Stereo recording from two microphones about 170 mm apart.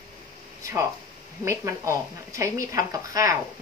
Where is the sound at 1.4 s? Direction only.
20° right (ahead or behind).